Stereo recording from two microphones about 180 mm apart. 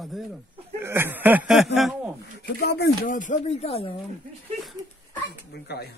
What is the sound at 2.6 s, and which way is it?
Speech, 60° left (ahead or behind).